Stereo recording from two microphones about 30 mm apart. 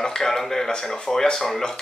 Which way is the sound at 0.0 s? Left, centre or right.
Centre.